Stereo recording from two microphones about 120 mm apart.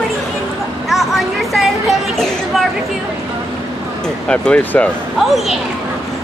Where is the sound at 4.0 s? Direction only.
10° left (ahead or behind).